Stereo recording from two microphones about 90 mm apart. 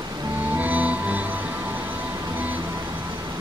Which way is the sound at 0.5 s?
15° right (ahead or behind).